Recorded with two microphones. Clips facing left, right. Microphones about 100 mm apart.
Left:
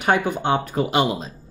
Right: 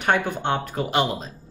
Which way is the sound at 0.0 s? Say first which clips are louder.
Left 2 dB; 10° left (ahead or behind).